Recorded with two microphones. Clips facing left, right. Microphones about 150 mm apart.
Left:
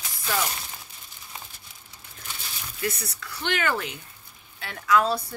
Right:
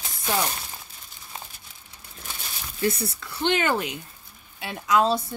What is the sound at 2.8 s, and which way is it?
A woman's voice, 25° right (ahead or behind).